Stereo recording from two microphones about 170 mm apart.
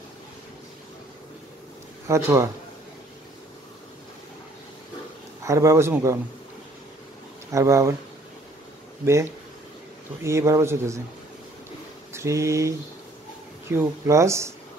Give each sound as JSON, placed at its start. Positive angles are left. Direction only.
{"t": 2.0, "sound": "speech", "side_deg": -15}
{"t": 5.4, "sound": "speech", "side_deg": -15}
{"t": 7.5, "sound": "speech", "side_deg": -15}
{"t": 9.0, "sound": "speech", "side_deg": -15}
{"t": 12.1, "sound": "speech", "side_deg": -15}